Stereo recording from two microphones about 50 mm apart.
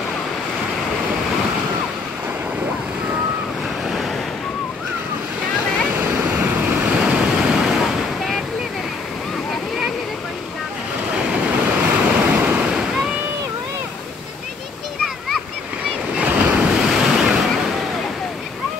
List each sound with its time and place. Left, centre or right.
3.8 s waves: centre
5.9 s waves: right
7.1 s waves: centre
11.1 s waves: right
12.7 s a sound: centre
16.2 s waves: right
16.8 s waves: centre